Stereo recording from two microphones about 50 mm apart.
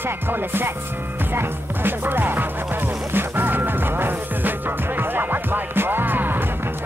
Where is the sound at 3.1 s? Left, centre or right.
Right.